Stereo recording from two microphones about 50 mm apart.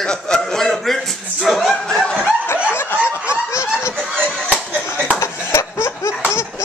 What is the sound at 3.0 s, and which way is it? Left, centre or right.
Snicker, left.